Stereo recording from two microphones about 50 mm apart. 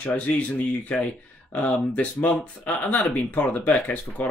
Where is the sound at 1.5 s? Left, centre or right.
Left.